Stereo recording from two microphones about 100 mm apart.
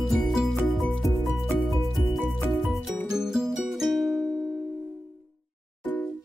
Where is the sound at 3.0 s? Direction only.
5° right (ahead or behind).